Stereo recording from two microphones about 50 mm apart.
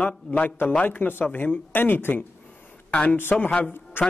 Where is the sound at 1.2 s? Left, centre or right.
Left.